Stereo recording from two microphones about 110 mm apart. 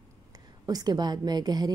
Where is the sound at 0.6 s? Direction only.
35° right (ahead or behind).